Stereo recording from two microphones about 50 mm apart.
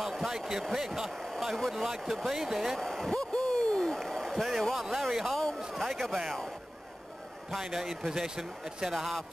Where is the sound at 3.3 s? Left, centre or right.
Centre.